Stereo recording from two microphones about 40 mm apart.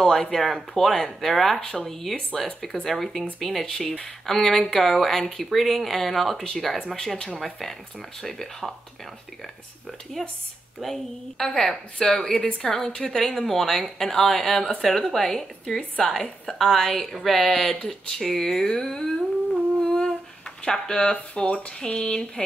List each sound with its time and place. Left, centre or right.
0.0 s speech: centre
1.6 s a woman's voice: centre
1.9 s speech: centre
3.6 s a woman's voice: centre
10.2 s a woman's voice: centre
20.6 s speech: centre